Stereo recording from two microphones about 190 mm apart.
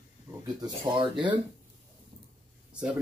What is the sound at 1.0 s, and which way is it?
Speech, 25° right (ahead or behind).